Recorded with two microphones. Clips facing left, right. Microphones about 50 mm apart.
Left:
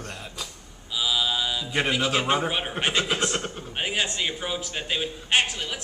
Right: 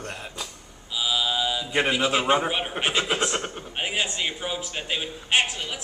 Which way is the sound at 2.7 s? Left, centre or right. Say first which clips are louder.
Even; centre.